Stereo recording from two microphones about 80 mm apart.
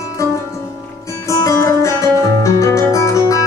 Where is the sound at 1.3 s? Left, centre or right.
Left.